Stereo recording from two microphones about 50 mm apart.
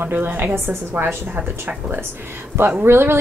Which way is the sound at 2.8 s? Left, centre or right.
Right.